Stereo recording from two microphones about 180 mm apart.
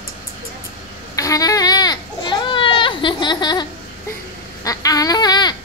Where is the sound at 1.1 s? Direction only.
20° left (ahead or behind).